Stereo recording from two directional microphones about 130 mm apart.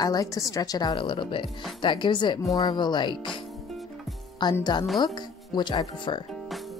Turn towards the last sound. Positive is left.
turn(degrees=35)  # may be behind; listen again after turning